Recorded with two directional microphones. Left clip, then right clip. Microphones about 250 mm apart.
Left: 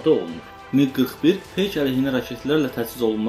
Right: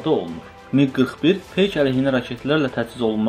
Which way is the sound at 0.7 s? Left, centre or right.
Right.